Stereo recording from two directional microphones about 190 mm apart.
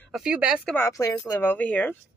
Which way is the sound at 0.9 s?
15° left (ahead or behind).